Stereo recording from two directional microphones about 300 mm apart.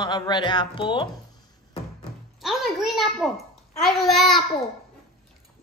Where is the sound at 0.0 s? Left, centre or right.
Centre.